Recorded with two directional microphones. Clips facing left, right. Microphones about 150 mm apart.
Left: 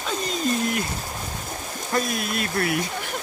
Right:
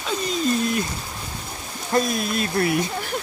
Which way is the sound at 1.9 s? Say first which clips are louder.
Right 4 dB; 25° right (ahead or behind).